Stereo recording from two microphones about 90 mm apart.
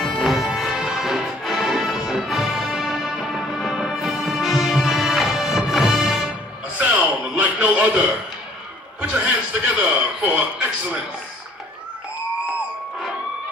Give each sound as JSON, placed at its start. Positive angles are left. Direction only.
{"t": 0.0, "sound": "music", "side_deg": -5}
{"t": 6.8, "sound": "a sound", "side_deg": -15}
{"t": 9.0, "sound": "a man's voice", "side_deg": -15}